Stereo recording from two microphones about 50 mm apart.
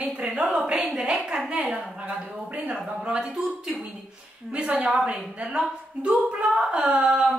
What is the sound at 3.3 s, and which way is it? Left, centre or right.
Speech, centre.